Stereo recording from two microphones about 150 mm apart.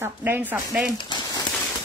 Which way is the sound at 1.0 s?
30° left (ahead or behind).